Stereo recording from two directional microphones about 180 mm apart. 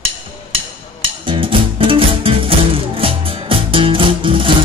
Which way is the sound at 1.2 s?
30° right (ahead or behind).